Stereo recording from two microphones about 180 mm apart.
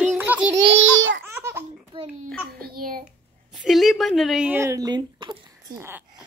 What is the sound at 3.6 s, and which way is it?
Speech, centre (ahead or behind).